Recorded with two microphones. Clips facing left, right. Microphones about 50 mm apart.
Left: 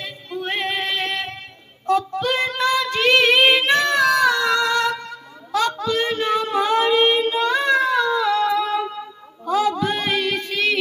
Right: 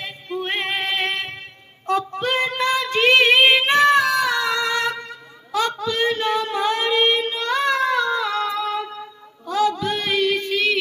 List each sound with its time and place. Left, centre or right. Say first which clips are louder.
0.0 s music: right 1 dB; right
1.9 s child singing: left 2 dB; right
4.1 s a sound: left 3 dB; centre
9.5 s music: left 1 dB; centre